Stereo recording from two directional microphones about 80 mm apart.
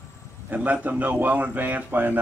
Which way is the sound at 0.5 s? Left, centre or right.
Right.